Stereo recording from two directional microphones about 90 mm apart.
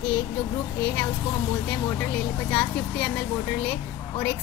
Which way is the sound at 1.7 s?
15° left (ahead or behind).